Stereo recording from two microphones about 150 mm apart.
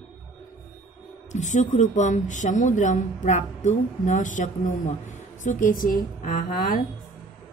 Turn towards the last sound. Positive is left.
turn(degrees=70)  # may be behind; listen again after turning